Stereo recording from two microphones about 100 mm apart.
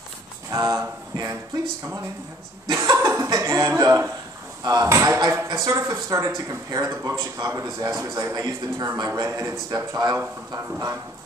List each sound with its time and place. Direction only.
0.5 s a man's voice: 30° right (ahead or behind)
2.7 s chuckle: 30° right (ahead or behind)
3.3 s a man's voice: 35° right (ahead or behind)
4.9 s chuckle: 30° right (ahead or behind)
5.3 s a man's voice: 30° right (ahead or behind)